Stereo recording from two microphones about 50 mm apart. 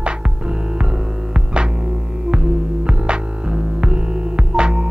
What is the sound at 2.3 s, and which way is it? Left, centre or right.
Music, centre.